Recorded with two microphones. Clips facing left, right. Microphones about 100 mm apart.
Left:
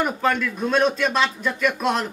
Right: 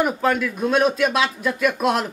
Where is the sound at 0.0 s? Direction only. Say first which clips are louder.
Right 2 dB; 5° right (ahead or behind).